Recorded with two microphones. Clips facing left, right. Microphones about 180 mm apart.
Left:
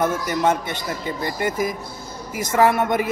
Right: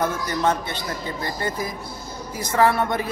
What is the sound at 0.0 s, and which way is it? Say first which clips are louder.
A man's voice: left 2 dB; 20° left (ahead or behind).